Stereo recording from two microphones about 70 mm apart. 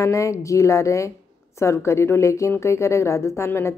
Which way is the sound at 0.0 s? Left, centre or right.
Left.